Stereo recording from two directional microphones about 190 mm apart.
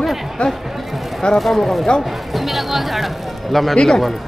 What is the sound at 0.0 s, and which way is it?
Speech, centre (ahead or behind).